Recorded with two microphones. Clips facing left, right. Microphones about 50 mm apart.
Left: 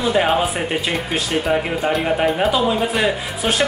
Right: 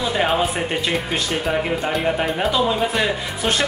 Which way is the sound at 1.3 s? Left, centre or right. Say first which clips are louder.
Left 3 dB; centre.